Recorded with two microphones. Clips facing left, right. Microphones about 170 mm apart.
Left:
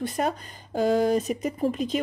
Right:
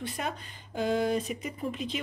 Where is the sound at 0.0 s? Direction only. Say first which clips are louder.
Left 8 dB; 45° left (ahead or behind).